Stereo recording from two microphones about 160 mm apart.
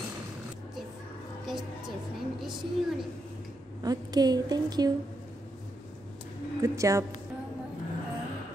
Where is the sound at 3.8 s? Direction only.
25° right (ahead or behind).